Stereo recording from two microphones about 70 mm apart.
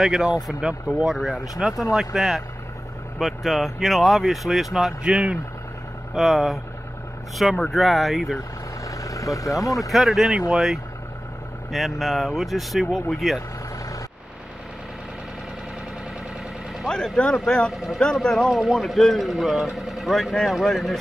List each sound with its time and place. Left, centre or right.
0.0 s speech: centre
6.1 s speech: centre
8.8 s vehicle: left
9.8 s speech: centre
16.8 s speech: centre
17.7 s speech: centre